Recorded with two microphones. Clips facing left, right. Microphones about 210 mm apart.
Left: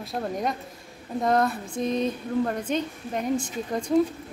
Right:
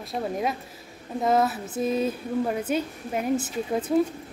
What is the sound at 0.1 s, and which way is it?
A woman's voice, 5° right (ahead or behind).